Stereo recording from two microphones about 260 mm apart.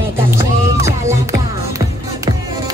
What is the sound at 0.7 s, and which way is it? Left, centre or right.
Music, centre.